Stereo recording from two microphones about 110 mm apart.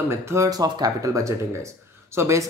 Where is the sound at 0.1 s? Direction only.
25° right (ahead or behind).